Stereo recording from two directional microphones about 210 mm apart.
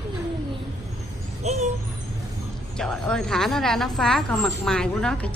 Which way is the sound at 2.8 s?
5° left (ahead or behind).